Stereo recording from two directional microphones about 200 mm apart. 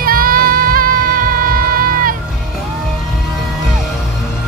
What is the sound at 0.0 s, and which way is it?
Music, 45° right (ahead or behind).